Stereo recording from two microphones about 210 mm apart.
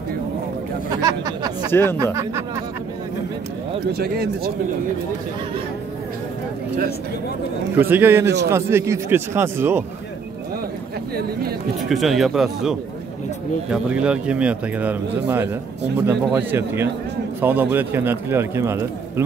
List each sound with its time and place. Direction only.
1.0 s a man's voice: 20° right (ahead or behind)
1.7 s speech: 10° left (ahead or behind)
3.9 s speech: 45° right (ahead or behind)
7.7 s a man's voice: 10° right (ahead or behind)
11.9 s a man's voice: centre (ahead or behind)